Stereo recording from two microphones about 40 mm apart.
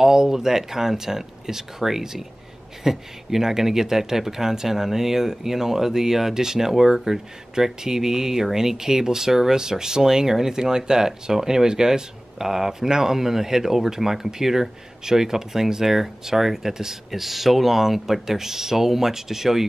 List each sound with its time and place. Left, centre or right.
0.0 s speech: centre